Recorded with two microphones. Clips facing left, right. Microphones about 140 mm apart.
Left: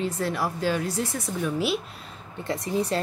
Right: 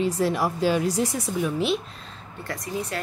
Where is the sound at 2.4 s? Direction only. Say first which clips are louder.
Left 4 dB; 25° left (ahead or behind).